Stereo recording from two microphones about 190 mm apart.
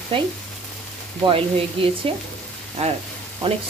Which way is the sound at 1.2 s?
30° right (ahead or behind).